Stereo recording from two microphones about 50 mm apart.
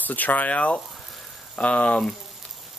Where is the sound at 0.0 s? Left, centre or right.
Left.